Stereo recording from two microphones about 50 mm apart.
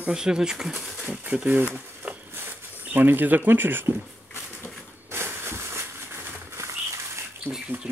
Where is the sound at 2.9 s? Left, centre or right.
Right.